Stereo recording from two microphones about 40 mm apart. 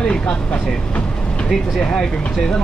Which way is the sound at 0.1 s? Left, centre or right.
Left.